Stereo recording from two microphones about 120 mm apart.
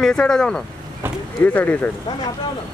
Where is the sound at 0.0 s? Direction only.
5° left (ahead or behind).